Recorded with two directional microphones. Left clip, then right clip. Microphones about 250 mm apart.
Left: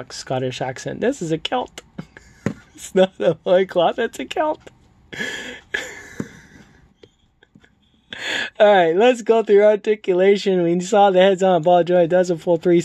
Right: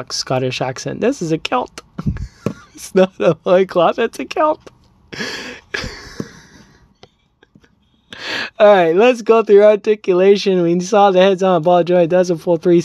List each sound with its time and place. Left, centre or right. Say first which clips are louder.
0.0 s speech: right 5 dB; centre
2.5 s a sound: right 3 dB; centre
8.1 s speech: right 1 dB; centre